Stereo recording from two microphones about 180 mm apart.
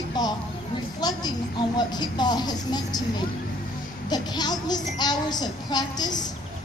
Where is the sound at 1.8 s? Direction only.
25° left (ahead or behind).